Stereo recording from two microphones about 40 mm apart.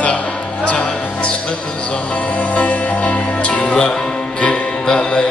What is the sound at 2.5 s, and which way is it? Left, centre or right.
Music, left.